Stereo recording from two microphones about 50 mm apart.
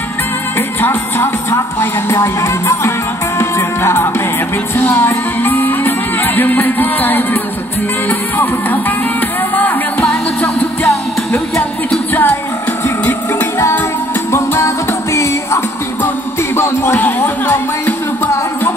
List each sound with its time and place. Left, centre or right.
0.6 s music: left
4.9 s music: left
12.1 s music: left
14.3 s music: left
16.5 s music: left
17.0 s music: left